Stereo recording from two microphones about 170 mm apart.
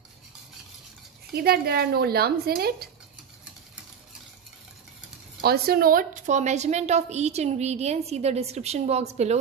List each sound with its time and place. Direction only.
1.3 s speech: 65° right (ahead or behind)
5.4 s a woman's voice: 65° right (ahead or behind); by 9.4 s 40° right (ahead or behind)